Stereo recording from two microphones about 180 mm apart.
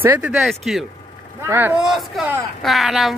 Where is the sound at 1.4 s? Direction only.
10° right (ahead or behind).